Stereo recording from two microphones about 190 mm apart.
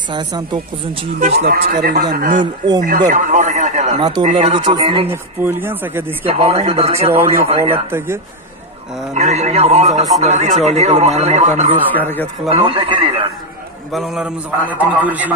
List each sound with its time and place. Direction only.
0.1 s a man's voice: 25° right (ahead or behind)
1.2 s speech: 45° right (ahead or behind)
4.0 s a man's voice: 25° right (ahead or behind)
4.3 s speech: 35° right (ahead or behind)
5.0 s a man's voice: 10° right (ahead or behind)
6.6 s speech: 30° right (ahead or behind)
7.1 s a man's voice: 10° right (ahead or behind)
9.1 s speech: 35° right (ahead or behind)
11.9 s speech: 10° left (ahead or behind)
12.4 s a man's voice: 30° right (ahead or behind)
13.9 s a man's voice: centre (ahead or behind)